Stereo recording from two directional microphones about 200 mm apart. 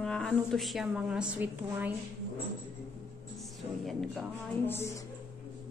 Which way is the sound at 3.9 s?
Centre (ahead or behind).